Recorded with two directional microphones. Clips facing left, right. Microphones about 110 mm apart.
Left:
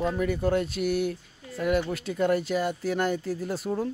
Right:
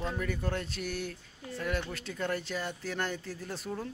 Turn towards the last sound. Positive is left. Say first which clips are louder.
# left 9 dB
turn(degrees=10)  # may be behind; listen again after turning